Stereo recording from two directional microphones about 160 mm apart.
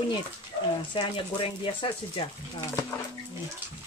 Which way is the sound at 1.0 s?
30° left (ahead or behind).